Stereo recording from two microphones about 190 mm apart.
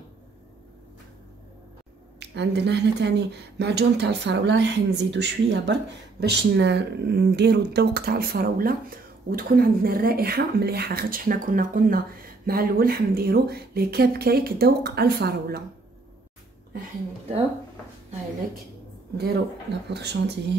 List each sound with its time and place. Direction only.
2.1 s speech: 60° right (ahead or behind)
19.1 s speech: 60° right (ahead or behind)